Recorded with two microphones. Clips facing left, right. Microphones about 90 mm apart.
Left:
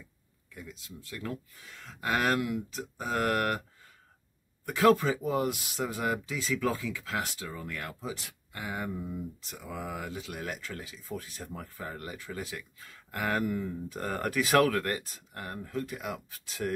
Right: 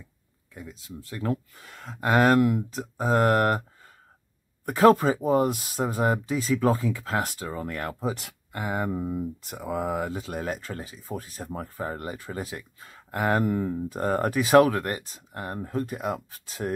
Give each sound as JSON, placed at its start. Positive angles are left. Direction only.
{"t": 0.6, "sound": "speech", "side_deg": -30}
{"t": 1.3, "sound": "speech", "side_deg": -55}
{"t": 4.6, "sound": "speech", "side_deg": -40}